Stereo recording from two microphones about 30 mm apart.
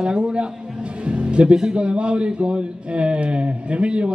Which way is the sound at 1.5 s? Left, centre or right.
Right.